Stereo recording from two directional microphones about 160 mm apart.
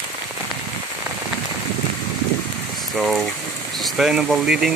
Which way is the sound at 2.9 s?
Centre (ahead or behind).